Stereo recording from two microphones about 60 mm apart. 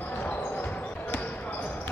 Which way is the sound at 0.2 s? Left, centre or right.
Left.